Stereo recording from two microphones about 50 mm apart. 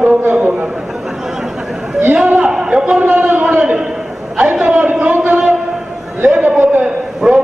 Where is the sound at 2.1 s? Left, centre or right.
Right.